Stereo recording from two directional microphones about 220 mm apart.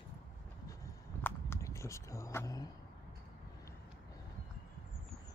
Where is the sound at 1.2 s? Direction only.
10° left (ahead or behind).